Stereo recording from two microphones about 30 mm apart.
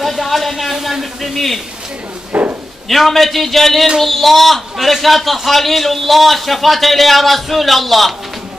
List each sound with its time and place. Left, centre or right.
0.0 s a man's voice: centre
2.3 s speech: right
2.9 s a man's voice: centre